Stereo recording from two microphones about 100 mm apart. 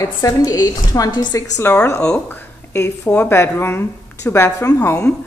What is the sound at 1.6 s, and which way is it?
Speech, 25° left (ahead or behind).